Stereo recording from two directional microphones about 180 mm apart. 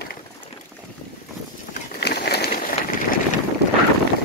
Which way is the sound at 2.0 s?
65° left (ahead or behind).